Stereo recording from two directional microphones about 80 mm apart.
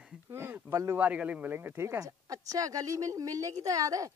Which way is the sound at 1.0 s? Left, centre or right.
Centre.